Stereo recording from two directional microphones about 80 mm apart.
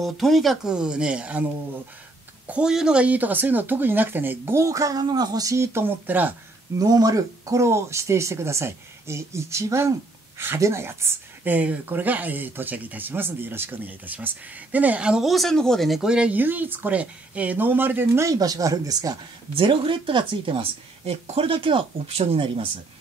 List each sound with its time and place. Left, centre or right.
0.0 s speech: centre
0.7 s speech: centre
2.4 s a woman's voice: centre
6.8 s speech: right
11.5 s speech: right
15.2 s speech: centre; by 19.1 s right
19.6 s speech: right